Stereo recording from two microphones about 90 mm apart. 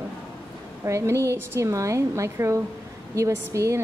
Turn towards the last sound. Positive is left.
turn(degrees=-35)  # may be behind; listen again after turning